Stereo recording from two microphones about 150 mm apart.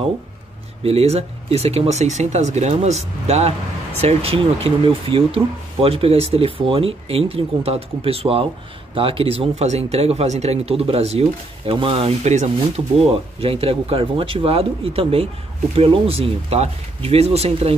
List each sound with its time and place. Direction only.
0.8 s speech: 45° right (ahead or behind)